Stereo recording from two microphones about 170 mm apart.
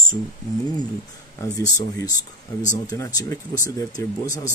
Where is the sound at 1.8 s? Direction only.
20° left (ahead or behind).